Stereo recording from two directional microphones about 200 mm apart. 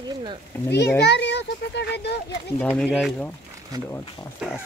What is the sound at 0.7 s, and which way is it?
A child's voice, 60° left (ahead or behind).